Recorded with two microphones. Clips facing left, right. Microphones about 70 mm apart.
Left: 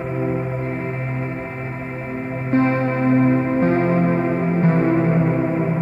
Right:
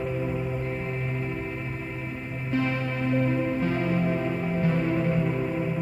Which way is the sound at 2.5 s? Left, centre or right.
Left.